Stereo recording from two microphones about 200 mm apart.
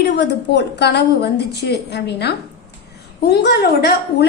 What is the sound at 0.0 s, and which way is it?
A woman's voice, 60° left (ahead or behind).